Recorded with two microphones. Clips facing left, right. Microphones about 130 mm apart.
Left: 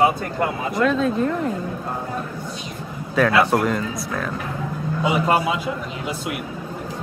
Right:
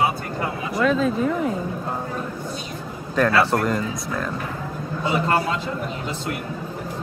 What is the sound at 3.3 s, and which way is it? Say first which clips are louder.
Speech: left 2 dB; 15° left (ahead or behind).